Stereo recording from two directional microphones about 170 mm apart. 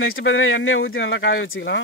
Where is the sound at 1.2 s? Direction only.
90° left.